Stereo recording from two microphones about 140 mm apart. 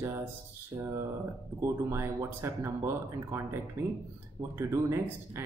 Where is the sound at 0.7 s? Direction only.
30° right (ahead or behind).